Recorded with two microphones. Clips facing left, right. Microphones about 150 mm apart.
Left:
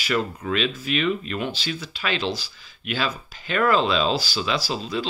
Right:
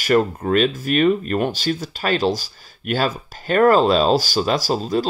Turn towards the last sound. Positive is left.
turn(degrees=-45)  # may be behind; listen again after turning